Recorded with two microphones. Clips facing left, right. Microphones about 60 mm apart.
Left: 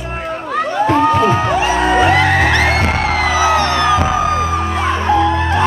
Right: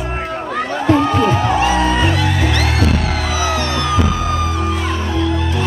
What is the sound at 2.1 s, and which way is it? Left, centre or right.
Music, left.